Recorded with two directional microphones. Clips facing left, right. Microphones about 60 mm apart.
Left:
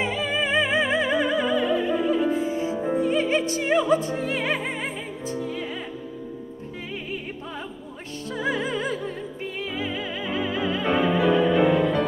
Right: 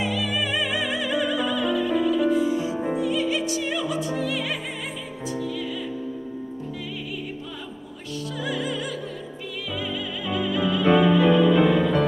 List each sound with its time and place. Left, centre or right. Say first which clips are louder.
0.0 s music: left 1 dB; left
8.4 s music: left 3 dB; left